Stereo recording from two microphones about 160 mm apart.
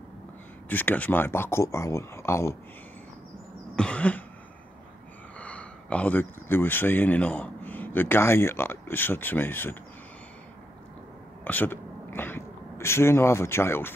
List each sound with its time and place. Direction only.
0.7 s speech: 10° left (ahead or behind)
3.7 s cough: 5° left (ahead or behind)
5.4 s speech: 10° left (ahead or behind)
11.4 s speech: 10° left (ahead or behind)